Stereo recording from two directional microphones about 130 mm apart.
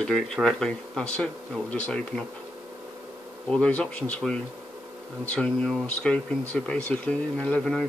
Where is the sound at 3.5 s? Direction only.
10° left (ahead or behind).